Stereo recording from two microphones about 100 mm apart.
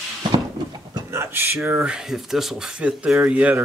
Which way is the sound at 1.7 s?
5° right (ahead or behind).